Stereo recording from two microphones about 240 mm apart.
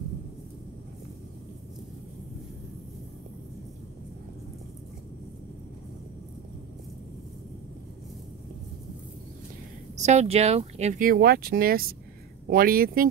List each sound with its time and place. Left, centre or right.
9.9 s speech: right